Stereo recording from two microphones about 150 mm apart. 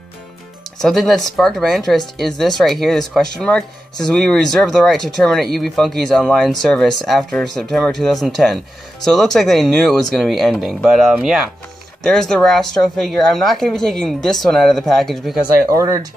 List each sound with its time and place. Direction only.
0.7 s speech: 5° left (ahead or behind)
15.7 s speech: 20° right (ahead or behind)